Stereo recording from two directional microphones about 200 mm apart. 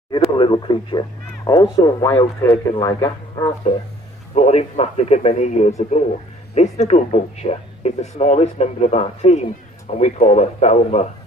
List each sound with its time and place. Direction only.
0.1 s speech: 25° left (ahead or behind)
3.7 s speech: 35° left (ahead or behind)